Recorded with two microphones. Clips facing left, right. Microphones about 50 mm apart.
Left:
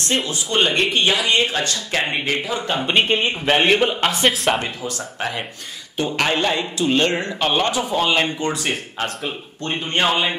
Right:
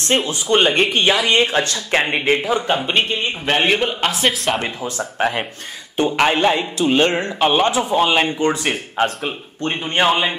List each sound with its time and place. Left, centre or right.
0.6 s a man's voice: centre
0.9 s speech: right
2.8 s a man's voice: centre
4.8 s a man's voice: right